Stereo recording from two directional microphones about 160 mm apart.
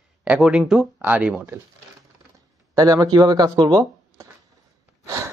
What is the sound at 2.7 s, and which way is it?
Speech, 20° right (ahead or behind).